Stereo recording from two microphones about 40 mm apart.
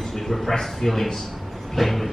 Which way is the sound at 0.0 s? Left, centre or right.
Centre.